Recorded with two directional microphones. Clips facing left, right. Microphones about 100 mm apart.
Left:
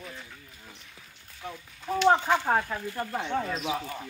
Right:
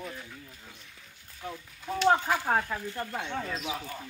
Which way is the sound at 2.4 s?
10° left (ahead or behind).